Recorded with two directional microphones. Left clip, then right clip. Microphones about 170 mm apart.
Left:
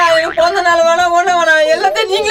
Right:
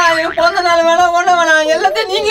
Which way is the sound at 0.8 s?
15° left (ahead or behind).